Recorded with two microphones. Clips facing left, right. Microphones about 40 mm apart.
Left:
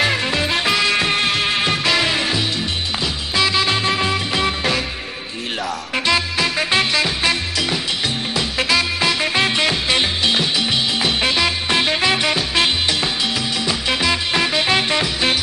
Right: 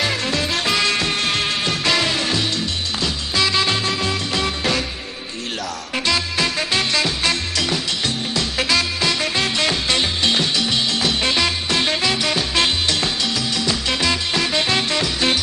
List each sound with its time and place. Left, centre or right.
0.0 s music: centre
1.0 s music: centre
5.9 s music: centre
11.7 s swing music: centre
12.4 s music: centre